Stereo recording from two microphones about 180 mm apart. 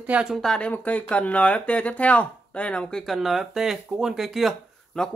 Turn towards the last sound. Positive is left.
turn(degrees=0)  # may be behind; listen again after turning